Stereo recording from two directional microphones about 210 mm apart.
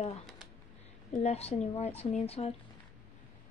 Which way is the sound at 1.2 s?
30° left (ahead or behind).